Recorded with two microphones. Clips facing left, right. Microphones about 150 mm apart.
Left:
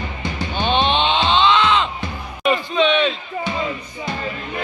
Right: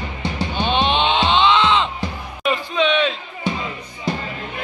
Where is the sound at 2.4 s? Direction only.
Centre (ahead or behind).